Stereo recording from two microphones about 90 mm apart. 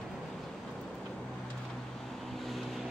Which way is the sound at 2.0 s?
Centre (ahead or behind).